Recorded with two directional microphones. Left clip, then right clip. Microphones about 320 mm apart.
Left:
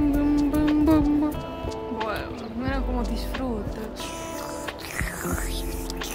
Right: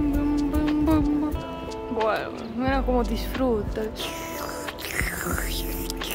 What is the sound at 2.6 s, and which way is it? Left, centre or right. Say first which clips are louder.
Speech: right 6 dB; centre.